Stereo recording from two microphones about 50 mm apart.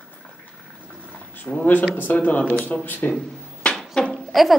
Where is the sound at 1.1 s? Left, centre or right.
Left.